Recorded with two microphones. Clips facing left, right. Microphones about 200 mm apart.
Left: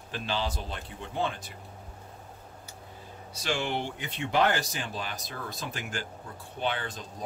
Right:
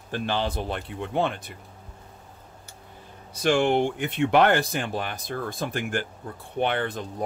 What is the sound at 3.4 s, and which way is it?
Speech, 50° right (ahead or behind).